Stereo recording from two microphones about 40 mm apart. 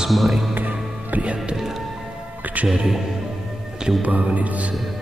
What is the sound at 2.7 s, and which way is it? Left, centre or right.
Speech, centre.